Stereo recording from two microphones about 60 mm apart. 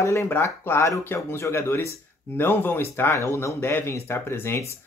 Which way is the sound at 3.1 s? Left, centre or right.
Left.